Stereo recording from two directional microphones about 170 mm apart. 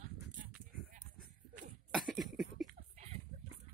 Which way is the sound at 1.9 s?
Centre (ahead or behind).